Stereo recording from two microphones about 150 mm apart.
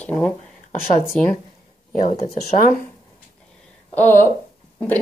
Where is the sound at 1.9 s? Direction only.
60° left (ahead or behind).